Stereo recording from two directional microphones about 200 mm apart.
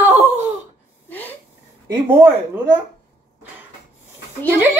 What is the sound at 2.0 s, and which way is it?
Speech, 10° right (ahead or behind).